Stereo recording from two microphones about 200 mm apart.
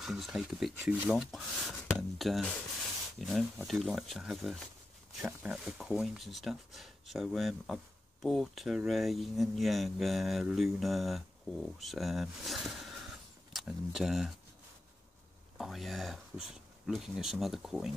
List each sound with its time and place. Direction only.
0.0 s speech: centre (ahead or behind)
15.5 s speech: centre (ahead or behind)